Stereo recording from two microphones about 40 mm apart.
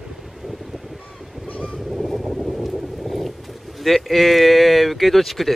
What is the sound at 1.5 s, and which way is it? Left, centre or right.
Vehicle, left.